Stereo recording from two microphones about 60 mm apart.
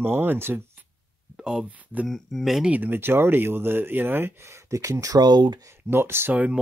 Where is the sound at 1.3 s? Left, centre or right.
Centre.